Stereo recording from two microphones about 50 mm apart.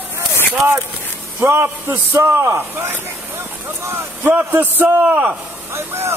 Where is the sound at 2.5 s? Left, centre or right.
Right.